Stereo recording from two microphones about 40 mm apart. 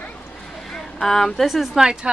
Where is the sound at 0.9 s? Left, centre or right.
Centre.